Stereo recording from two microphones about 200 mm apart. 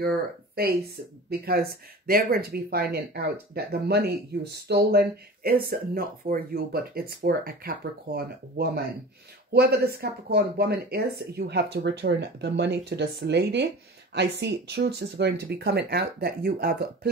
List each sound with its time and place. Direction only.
0.6 s speech: 50° right (ahead or behind)